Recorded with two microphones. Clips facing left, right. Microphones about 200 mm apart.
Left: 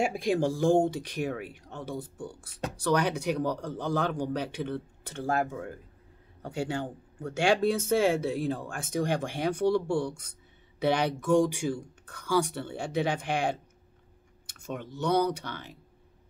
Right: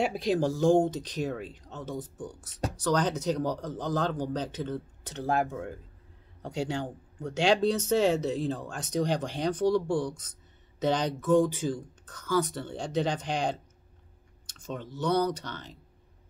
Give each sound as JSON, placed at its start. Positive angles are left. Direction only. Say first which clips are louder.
{"t": 0.0, "sound": "a sound", "louder": "even", "side_deg": 50}
{"t": 0.6, "sound": "speech", "louder": "right 1 dB", "side_deg": 10}
{"t": 5.3, "sound": "speech", "louder": "right 1 dB", "side_deg": 0}
{"t": 14.4, "sound": "clicking", "louder": "even", "side_deg": 10}
{"t": 15.0, "sound": "speech", "louder": "left 1 dB", "side_deg": 10}